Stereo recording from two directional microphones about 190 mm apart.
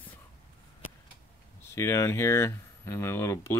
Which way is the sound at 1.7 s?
15° left (ahead or behind).